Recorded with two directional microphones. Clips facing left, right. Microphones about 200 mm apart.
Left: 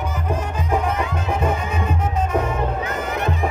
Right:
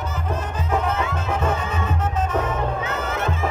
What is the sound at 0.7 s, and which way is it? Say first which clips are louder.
Music: left 1 dB; 15° left (ahead or behind).